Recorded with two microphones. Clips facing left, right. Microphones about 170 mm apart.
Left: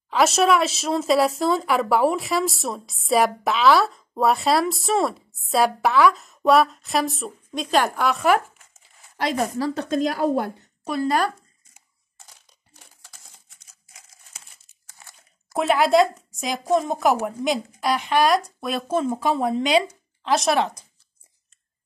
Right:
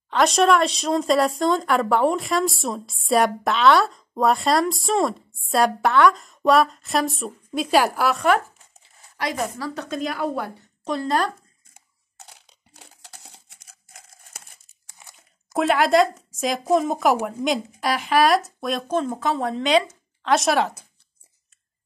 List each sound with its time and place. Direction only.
0.1 s speech: 5° left (ahead or behind)
9.1 s speech: 25° left (ahead or behind)
9.8 s speech: 40° left (ahead or behind)
10.8 s speech: 10° left (ahead or behind)
11.7 s a sound: 65° right (ahead or behind)
13.7 s crumpling: 55° right (ahead or behind)
14.9 s crunch: 15° right (ahead or behind)
15.5 s speech: centre (ahead or behind)